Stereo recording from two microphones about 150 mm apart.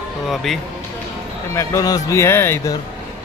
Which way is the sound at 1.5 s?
20° left (ahead or behind).